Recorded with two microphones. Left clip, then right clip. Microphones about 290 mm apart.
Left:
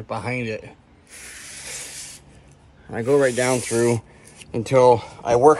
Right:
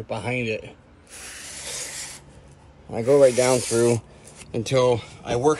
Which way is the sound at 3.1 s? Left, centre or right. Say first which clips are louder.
Right 2 dB; left.